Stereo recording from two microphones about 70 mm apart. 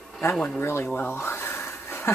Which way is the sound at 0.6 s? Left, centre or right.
Left.